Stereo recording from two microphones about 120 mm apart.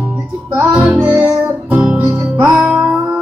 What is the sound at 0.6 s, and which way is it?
Music, centre (ahead or behind).